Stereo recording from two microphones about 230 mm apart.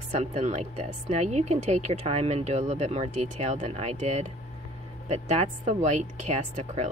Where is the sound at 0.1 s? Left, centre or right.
Right.